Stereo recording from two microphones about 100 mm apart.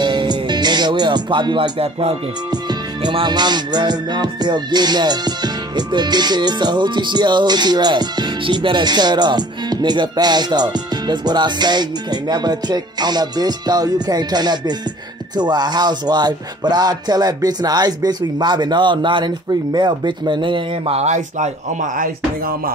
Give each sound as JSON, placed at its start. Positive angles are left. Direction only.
{"t": 0.0, "sound": "music", "side_deg": -50}
{"t": 2.5, "sound": "music", "side_deg": -45}
{"t": 20.8, "sound": "speech", "side_deg": -90}